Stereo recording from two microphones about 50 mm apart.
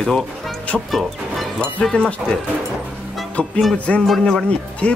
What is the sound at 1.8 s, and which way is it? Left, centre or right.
Speech, centre.